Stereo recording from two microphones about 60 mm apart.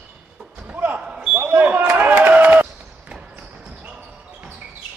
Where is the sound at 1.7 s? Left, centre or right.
Right.